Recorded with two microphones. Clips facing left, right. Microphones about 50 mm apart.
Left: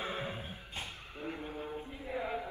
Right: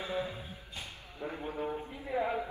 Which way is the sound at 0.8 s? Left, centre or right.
Left.